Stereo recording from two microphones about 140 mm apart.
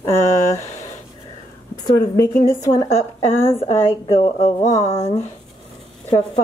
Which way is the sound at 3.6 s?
45° left (ahead or behind).